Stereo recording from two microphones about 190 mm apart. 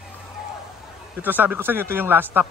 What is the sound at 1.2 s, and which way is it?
A man's voice, 10° right (ahead or behind).